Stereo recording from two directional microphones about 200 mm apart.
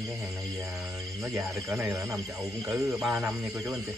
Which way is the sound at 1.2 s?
10° right (ahead or behind).